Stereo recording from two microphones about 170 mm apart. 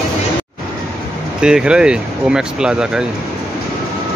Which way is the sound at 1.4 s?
5° right (ahead or behind).